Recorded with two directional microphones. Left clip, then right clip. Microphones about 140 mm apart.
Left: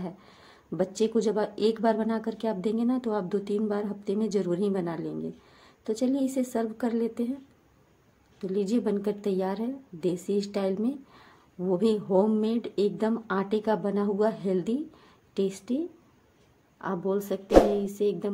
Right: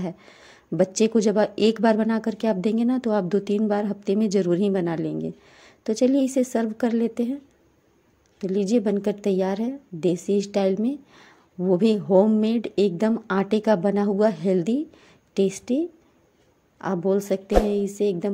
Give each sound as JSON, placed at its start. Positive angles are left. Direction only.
{"t": 0.0, "sound": "a woman's voice", "side_deg": -45}
{"t": 8.4, "sound": "a woman's voice", "side_deg": -40}